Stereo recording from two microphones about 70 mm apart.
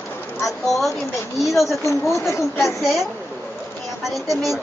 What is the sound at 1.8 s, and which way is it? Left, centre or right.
Speech, left.